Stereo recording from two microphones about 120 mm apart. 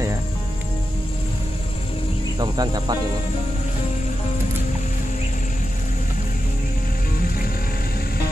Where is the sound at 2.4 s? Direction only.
35° right (ahead or behind).